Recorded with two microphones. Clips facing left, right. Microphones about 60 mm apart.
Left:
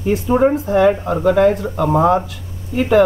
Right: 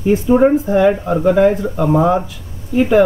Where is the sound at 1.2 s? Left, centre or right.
Centre.